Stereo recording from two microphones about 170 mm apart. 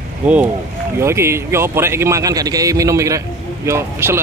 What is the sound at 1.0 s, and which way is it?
A man's voice, 15° right (ahead or behind).